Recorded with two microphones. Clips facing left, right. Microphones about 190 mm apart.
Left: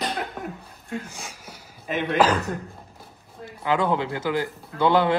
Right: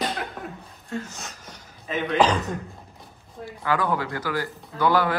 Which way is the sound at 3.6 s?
20° left (ahead or behind).